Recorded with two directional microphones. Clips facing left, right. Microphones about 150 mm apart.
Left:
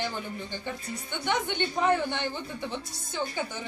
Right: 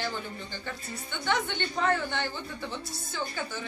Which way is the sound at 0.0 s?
15° left (ahead or behind).